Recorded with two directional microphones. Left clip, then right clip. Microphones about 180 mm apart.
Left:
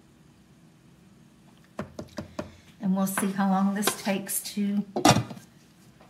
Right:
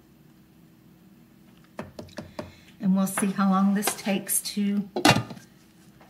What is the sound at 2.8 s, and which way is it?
Speech, 30° right (ahead or behind).